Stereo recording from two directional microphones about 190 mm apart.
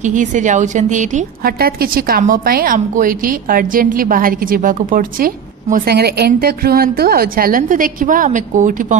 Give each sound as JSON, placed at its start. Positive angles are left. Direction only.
{"t": 0.0, "sound": "a woman's voice", "side_deg": -40}